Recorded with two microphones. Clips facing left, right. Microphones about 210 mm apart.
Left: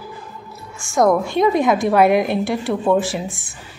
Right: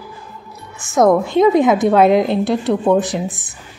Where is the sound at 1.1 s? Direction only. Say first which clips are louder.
Right 5 dB; 20° right (ahead or behind).